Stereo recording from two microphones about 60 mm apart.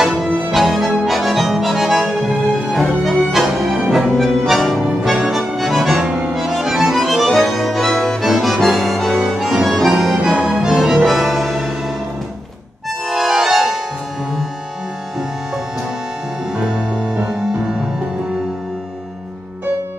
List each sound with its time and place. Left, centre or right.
0.5 s music: centre
1.0 s accordion: centre
2.5 s music: centre
5.6 s accordion: centre
6.0 s accordion: centre
6.3 s music: centre
10.3 s music: centre
10.7 s music: centre
13.1 s music: centre
16.5 s music: centre